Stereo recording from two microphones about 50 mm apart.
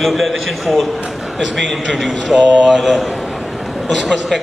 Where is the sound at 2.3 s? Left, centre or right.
Centre.